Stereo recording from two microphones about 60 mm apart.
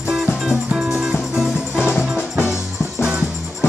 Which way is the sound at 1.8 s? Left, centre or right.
Left.